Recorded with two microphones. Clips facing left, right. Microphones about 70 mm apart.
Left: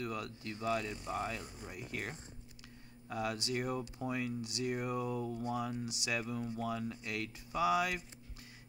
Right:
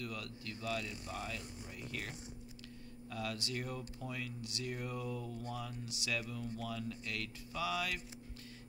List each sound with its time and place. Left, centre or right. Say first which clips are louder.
0.0 s speech: left 4 dB; left